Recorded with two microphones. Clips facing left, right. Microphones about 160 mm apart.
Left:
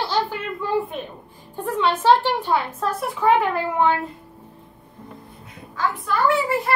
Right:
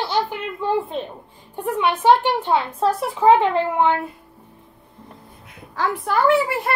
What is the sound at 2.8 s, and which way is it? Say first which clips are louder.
A woman's voice: right 4 dB; 30° right (ahead or behind).